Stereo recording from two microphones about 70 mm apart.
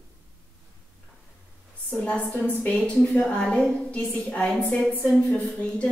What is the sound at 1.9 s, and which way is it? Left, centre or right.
A woman's voice, centre.